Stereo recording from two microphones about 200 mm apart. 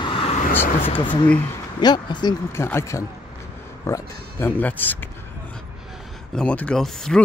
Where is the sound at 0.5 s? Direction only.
10° left (ahead or behind).